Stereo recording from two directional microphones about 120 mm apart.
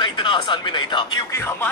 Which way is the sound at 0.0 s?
40° left (ahead or behind).